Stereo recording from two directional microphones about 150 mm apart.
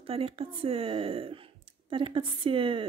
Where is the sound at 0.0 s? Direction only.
40° right (ahead or behind).